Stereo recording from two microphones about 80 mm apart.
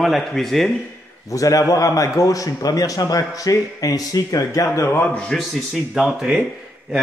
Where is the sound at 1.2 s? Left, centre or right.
Left.